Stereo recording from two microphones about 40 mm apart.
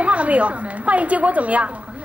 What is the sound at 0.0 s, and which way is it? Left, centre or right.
Speech, right.